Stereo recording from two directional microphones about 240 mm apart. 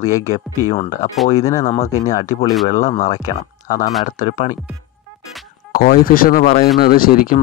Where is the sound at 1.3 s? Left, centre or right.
Centre.